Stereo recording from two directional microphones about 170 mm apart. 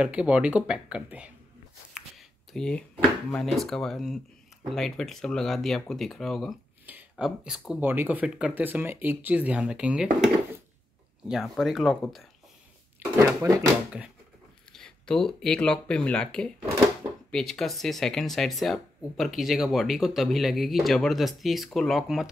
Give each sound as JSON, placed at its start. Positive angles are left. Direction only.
{"t": 0.0, "sound": "speech", "side_deg": -5}
{"t": 11.2, "sound": "speech", "side_deg": 0}
{"t": 13.1, "sound": "speech", "side_deg": -15}
{"t": 14.7, "sound": "speech", "side_deg": 5}